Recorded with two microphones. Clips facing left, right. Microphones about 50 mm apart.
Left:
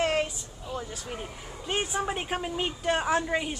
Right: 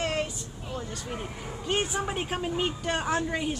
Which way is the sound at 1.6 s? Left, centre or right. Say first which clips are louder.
Even; centre.